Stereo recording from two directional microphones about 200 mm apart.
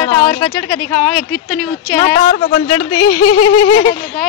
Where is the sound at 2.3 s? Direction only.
30° left (ahead or behind).